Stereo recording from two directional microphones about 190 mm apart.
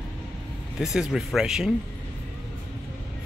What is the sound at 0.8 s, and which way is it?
Speech, centre (ahead or behind).